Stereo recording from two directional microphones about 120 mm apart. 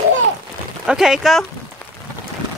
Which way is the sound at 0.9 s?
5° right (ahead or behind).